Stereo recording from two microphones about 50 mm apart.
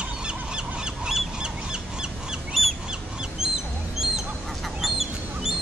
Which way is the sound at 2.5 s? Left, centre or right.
Centre.